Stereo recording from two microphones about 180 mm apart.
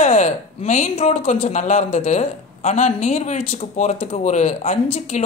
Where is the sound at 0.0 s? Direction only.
40° left (ahead or behind).